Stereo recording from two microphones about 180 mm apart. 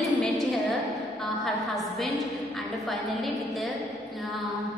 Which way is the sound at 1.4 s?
Centre (ahead or behind).